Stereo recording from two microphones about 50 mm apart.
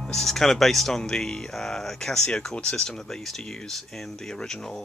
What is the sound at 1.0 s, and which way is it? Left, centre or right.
Speech, centre.